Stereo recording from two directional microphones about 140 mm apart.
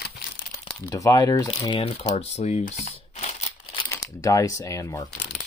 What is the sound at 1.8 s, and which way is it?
Speech, 45° left (ahead or behind).